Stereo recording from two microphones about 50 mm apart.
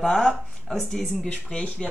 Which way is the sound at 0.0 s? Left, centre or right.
Centre.